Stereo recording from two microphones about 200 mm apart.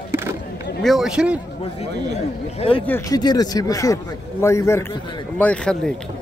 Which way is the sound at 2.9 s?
20° left (ahead or behind).